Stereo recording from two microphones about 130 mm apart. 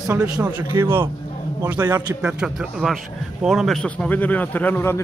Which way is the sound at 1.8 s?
30° right (ahead or behind).